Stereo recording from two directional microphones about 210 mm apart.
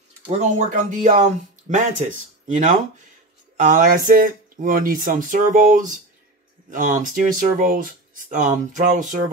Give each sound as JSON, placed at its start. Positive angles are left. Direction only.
{"t": 0.4, "sound": "speech", "side_deg": -35}